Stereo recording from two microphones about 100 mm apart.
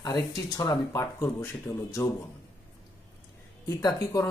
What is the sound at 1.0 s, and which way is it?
Speech, 25° left (ahead or behind).